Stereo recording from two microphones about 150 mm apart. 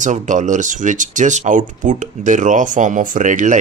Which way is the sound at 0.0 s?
55° right (ahead or behind).